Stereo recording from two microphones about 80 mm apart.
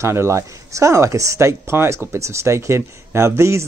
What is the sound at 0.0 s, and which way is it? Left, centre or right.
Speech, right.